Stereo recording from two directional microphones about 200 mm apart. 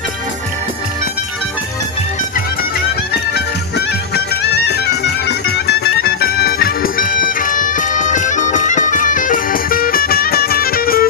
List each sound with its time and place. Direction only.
3.3 s music: 55° left (ahead or behind)